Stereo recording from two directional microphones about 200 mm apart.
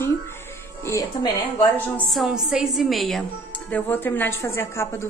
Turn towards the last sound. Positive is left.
turn(degrees=10)  # may be behind; listen again after turning